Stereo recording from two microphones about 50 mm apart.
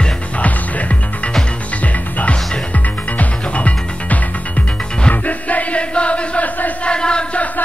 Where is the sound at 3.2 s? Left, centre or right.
Left.